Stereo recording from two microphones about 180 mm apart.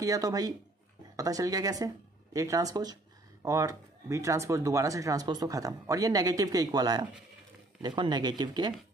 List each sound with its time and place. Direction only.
0.0 s speech: 20° right (ahead or behind)